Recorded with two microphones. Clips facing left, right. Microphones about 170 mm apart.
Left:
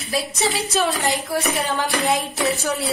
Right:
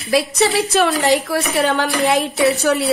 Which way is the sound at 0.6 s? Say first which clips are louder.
Right 6 dB; 65° right (ahead or behind).